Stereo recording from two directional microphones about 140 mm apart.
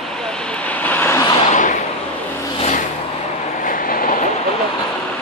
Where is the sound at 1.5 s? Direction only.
65° left (ahead or behind).